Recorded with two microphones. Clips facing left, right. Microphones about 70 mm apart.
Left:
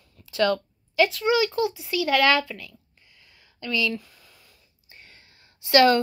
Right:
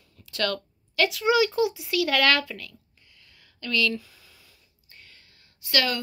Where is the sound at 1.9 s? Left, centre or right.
Centre.